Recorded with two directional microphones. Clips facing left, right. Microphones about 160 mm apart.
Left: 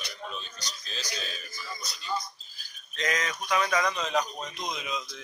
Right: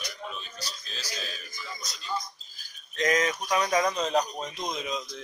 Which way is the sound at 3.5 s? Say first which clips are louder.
Right 1 dB; 35° right (ahead or behind).